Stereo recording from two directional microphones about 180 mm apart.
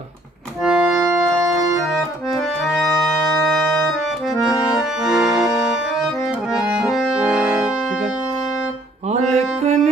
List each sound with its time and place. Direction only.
0.7 s music: 5° right (ahead or behind)
3.2 s music: 5° left (ahead or behind)
4.4 s accordion: centre (ahead or behind)
9.1 s music: 40° right (ahead or behind)